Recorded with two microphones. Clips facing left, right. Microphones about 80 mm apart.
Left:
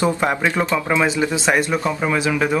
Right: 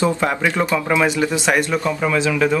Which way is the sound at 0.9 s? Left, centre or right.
Left.